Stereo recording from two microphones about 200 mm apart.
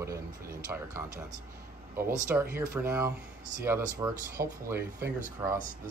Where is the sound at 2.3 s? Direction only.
10° right (ahead or behind).